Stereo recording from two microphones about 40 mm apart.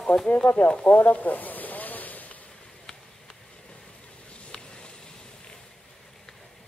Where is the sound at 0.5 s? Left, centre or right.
Left.